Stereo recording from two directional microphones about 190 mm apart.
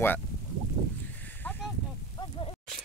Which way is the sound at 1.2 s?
10° left (ahead or behind).